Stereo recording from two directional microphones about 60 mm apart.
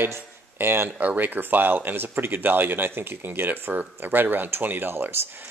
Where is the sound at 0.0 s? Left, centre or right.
Right.